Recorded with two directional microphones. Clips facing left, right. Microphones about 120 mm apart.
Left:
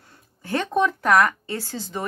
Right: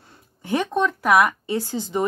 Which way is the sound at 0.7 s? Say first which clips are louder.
Left 4 dB; 5° left (ahead or behind).